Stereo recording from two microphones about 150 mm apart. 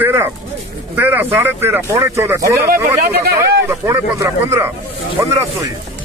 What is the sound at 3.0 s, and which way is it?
Speech, 90° right.